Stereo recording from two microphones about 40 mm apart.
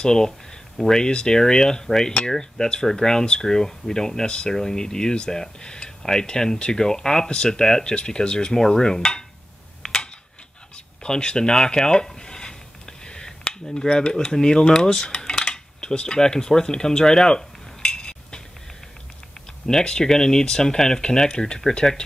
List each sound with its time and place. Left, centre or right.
0.0 s speech: centre
11.0 s speech: left
17.3 s cutlery: centre
19.6 s speech: centre